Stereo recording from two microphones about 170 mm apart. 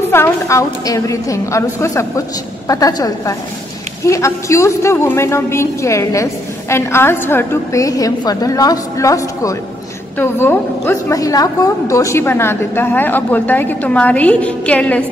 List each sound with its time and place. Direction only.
0.1 s a woman's voice: 15° left (ahead or behind)